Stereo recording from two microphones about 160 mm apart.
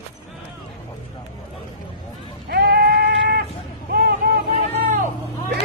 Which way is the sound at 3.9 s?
75° right (ahead or behind).